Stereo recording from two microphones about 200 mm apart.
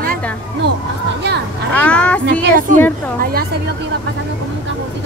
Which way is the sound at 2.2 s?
45° right (ahead or behind).